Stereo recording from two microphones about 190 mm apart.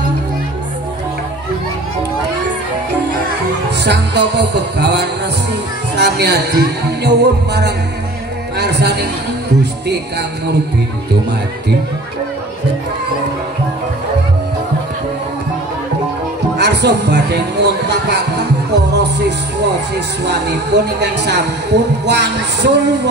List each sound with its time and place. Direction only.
3.8 s speech: 65° right (ahead or behind)
16.5 s speech: 65° right (ahead or behind)